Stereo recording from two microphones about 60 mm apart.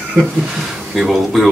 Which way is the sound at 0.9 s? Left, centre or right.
Centre.